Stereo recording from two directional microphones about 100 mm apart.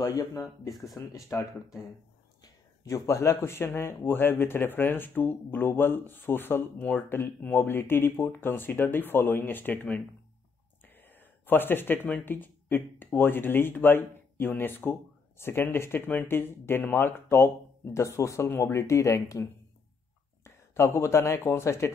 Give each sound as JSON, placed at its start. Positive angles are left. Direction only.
{"t": 0.0, "sound": "speech", "side_deg": 30}
{"t": 0.7, "sound": "speech", "side_deg": 0}
{"t": 0.9, "sound": "speech", "side_deg": 30}
{"t": 11.1, "sound": "speech", "side_deg": 20}